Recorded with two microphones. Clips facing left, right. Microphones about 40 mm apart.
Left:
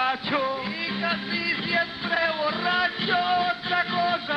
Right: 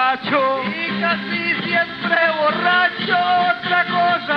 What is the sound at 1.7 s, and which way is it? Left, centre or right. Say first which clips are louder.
Music: right 8 dB; right.